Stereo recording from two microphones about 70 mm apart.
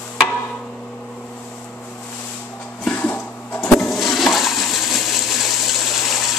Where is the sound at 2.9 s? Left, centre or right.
Left.